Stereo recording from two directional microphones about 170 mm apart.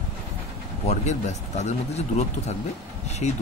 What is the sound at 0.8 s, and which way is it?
Speech, 45° left (ahead or behind).